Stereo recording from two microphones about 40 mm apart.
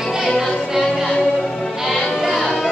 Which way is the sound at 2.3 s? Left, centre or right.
Centre.